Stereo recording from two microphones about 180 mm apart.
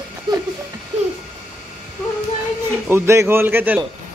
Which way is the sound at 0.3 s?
25° right (ahead or behind).